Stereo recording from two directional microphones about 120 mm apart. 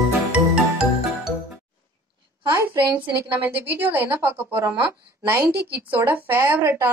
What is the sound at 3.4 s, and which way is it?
A woman's voice, 15° right (ahead or behind).